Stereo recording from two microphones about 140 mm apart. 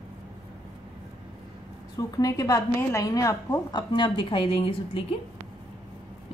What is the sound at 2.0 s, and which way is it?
A woman's voice, 25° left (ahead or behind).